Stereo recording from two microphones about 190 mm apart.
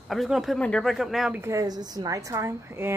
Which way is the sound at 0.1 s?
Centre (ahead or behind).